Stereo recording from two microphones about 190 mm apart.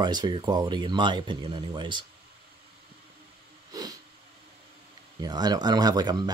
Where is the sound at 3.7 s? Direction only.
20° right (ahead or behind).